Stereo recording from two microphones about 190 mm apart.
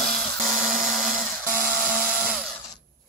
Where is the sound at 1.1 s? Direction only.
50° right (ahead or behind).